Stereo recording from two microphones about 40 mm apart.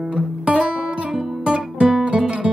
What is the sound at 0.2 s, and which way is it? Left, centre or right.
Guitar, right.